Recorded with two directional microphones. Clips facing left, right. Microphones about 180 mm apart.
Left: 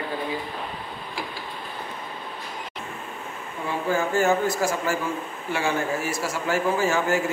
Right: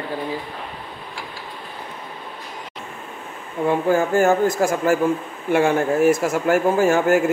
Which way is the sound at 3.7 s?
50° right (ahead or behind).